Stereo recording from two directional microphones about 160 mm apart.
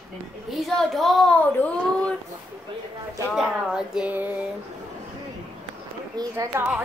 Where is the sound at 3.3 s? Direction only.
5° right (ahead or behind).